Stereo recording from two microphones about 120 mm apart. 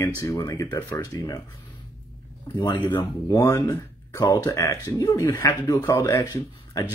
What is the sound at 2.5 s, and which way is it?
Speech, 40° left (ahead or behind).